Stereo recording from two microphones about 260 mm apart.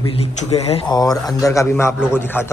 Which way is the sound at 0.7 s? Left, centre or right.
Centre.